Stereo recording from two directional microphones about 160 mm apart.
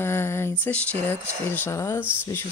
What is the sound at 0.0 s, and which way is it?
Speech, 15° left (ahead or behind).